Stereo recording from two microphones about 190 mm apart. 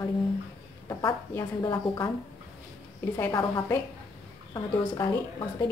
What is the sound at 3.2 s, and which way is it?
A woman's voice, 15° left (ahead or behind).